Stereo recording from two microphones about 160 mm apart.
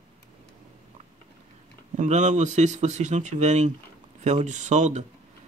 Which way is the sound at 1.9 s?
50° right (ahead or behind).